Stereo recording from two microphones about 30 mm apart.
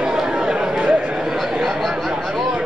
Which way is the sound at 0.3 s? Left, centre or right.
Right.